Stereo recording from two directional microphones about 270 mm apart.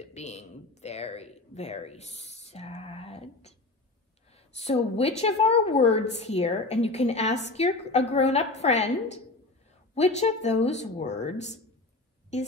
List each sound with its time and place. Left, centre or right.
0.0 s a woman's voice: left